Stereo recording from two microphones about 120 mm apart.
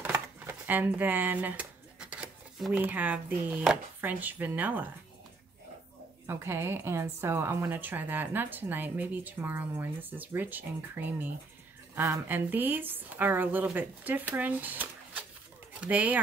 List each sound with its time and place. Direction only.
0.0 s a sound: 20° right (ahead or behind)
2.7 s a woman's voice: 15° right (ahead or behind)
6.2 s a woman's voice: 20° right (ahead or behind)